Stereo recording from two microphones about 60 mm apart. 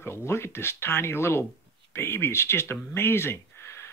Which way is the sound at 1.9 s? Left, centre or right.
Left.